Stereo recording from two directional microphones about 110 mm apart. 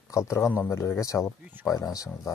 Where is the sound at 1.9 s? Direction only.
35° left (ahead or behind).